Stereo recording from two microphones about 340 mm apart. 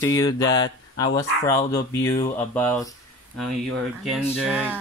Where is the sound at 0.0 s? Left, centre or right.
Centre.